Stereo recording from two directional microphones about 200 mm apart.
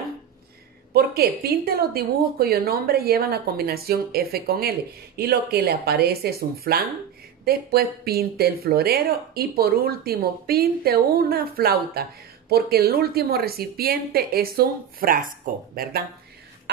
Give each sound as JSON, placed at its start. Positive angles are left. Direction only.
{"t": 0.9, "sound": "speech", "side_deg": -50}